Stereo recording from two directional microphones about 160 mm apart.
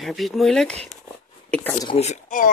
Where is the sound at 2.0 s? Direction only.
50° left (ahead or behind).